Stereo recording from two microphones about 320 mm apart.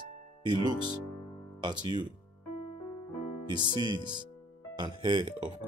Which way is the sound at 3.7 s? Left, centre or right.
Centre.